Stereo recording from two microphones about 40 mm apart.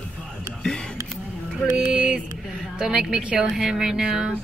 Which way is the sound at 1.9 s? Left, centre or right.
Right.